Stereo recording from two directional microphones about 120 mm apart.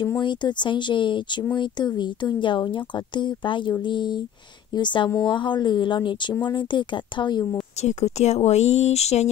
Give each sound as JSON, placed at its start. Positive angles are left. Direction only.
{"t": 0.2, "sound": "a woman's voice", "side_deg": 40}
{"t": 7.8, "sound": "speech", "side_deg": 70}